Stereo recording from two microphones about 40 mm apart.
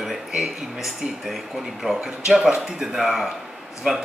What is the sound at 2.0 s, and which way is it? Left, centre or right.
A man's voice, centre.